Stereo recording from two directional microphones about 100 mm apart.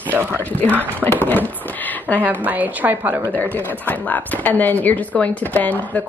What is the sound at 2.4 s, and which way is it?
Speech, 15° right (ahead or behind).